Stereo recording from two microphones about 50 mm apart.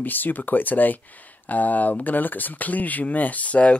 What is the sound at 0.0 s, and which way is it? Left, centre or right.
Speech, left.